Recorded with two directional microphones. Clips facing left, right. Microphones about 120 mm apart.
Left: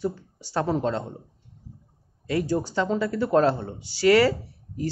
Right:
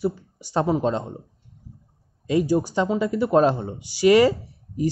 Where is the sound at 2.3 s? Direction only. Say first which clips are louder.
Right 4 dB; 15° right (ahead or behind).